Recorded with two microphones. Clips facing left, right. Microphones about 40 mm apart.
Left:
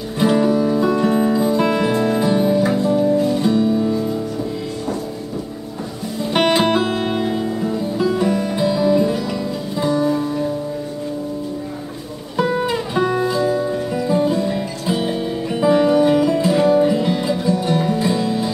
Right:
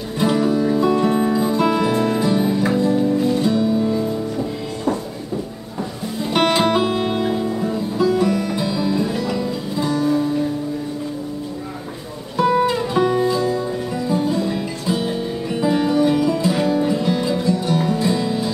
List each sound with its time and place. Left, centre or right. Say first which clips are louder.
0.2 s music: left 2 dB; centre
1.7 s music: even; left
2.0 s music: left 1 dB; centre
3.0 s music: left 1 dB; centre
6.3 s music: left 1 dB; centre
12.4 s music: right 2 dB; centre
14.9 s guitar: left 1 dB; centre